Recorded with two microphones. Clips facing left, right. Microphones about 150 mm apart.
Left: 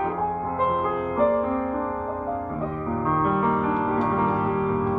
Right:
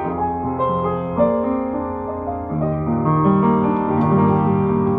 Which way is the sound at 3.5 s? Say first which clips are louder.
Right 7 dB; 20° right (ahead or behind).